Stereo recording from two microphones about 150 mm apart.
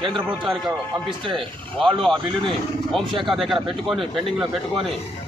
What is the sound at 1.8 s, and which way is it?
Speech, 35° right (ahead or behind).